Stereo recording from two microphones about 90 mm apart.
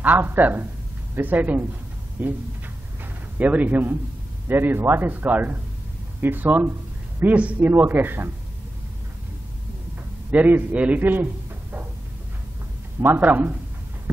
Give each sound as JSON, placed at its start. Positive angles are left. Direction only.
{"t": 0.0, "sound": "speech", "side_deg": -20}
{"t": 3.3, "sound": "speech", "side_deg": -20}
{"t": 10.3, "sound": "a man's voice", "side_deg": -20}
{"t": 13.0, "sound": "speech", "side_deg": -20}